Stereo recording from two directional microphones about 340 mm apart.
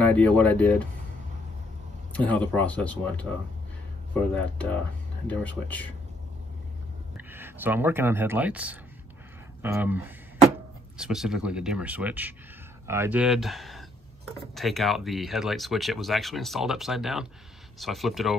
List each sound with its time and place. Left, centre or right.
0.0 s speech: centre
2.1 s speech: centre
7.2 s speech: centre